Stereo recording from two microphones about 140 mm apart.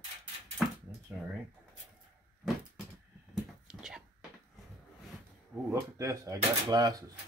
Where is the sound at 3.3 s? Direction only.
5° right (ahead or behind).